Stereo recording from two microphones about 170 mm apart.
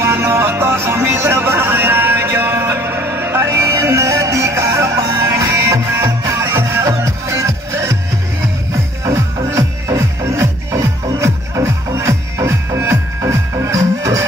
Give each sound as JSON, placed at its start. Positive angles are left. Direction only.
{"t": 0.0, "sound": "music", "side_deg": -15}
{"t": 9.0, "sound": "music", "side_deg": -20}